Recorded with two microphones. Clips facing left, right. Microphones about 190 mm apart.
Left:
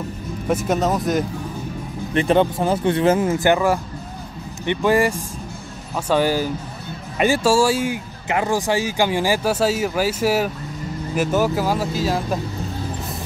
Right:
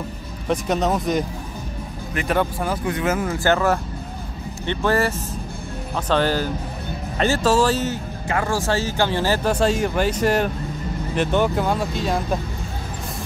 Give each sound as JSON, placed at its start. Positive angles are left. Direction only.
{"t": 0.5, "sound": "speech", "side_deg": 0}
{"t": 2.1, "sound": "speech", "side_deg": 25}